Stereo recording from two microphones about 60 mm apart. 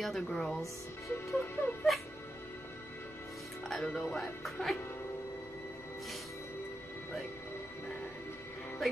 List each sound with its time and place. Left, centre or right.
0.0 s speech: centre
1.3 s speech: left
3.6 s speech: centre
4.2 s speech: centre